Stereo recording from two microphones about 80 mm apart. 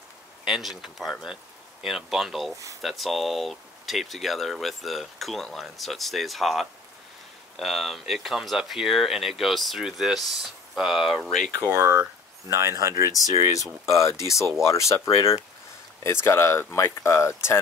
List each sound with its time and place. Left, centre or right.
0.5 s speech: centre
2.5 s speech: right
2.8 s speech: centre
11.6 s speech: right
13.1 s speech: left